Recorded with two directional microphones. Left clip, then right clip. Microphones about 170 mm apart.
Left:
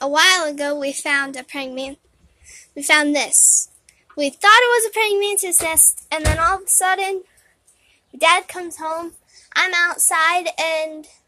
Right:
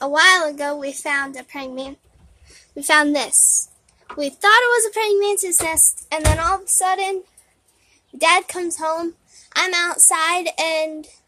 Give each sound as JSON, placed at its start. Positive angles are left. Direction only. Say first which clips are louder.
{"t": 0.0, "sound": "speech", "louder": "right 1 dB", "side_deg": 5}
{"t": 8.2, "sound": "a child's voice", "louder": "even", "side_deg": -15}